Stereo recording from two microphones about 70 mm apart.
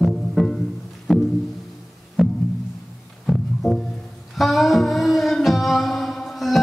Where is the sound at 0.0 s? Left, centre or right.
Centre.